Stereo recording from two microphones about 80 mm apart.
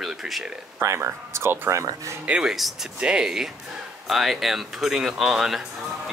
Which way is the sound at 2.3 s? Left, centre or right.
Centre.